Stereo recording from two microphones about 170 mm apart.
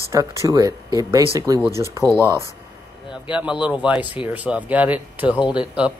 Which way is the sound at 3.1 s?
5° right (ahead or behind).